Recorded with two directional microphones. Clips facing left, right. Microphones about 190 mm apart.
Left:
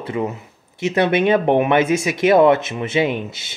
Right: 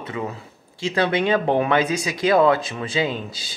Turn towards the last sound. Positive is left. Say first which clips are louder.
# left 4 dB
turn(degrees=25)  # may be behind; listen again after turning